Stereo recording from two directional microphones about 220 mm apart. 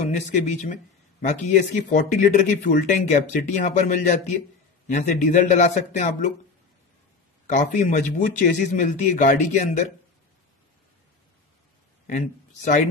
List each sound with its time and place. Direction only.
0.0 s speech: 35° left (ahead or behind)
7.4 s speech: 35° left (ahead or behind)
12.1 s speech: 35° left (ahead or behind)